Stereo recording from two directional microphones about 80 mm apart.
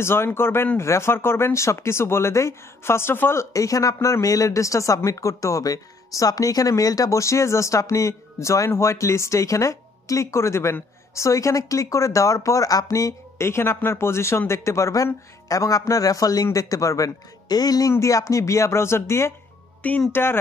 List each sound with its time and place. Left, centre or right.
0.0 s speech: left
3.5 s a man's voice: left
17.9 s speech: left